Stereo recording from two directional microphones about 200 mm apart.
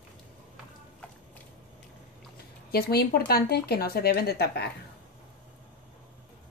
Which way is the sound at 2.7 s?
50° left (ahead or behind).